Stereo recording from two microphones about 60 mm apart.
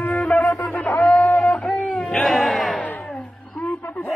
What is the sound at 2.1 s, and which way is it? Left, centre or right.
Crowd, centre.